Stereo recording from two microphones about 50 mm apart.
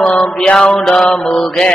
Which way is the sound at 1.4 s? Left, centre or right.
Centre.